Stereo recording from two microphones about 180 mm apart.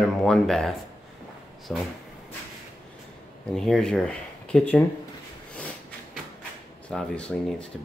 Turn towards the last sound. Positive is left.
turn(degrees=5)  # may be behind; listen again after turning